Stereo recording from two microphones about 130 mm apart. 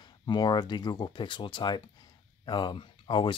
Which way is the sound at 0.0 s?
35° left (ahead or behind).